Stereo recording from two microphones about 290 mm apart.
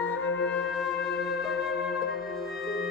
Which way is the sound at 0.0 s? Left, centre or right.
Centre.